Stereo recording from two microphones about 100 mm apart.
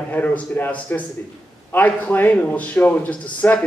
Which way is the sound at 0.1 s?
15° left (ahead or behind).